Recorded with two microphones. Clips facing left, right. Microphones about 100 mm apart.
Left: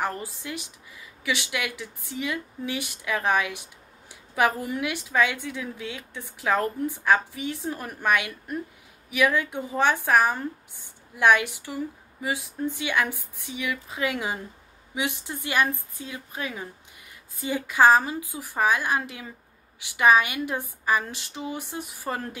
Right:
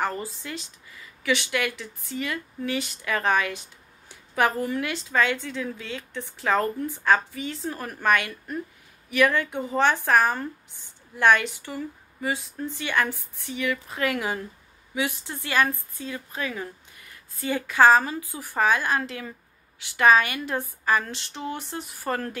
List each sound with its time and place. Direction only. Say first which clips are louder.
0.0 s a woman's voice: right 1 dB; 10° left (ahead or behind)